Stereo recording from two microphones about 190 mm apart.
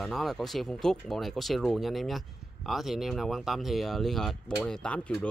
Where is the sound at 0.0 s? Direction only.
Centre (ahead or behind).